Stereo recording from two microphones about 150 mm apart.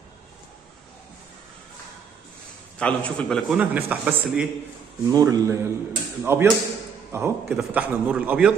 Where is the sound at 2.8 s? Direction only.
10° left (ahead or behind).